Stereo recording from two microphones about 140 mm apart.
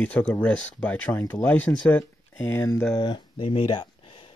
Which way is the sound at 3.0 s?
35° left (ahead or behind).